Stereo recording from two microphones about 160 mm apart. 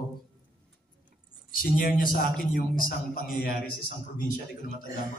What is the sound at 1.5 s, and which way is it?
A man's voice, 60° left (ahead or behind).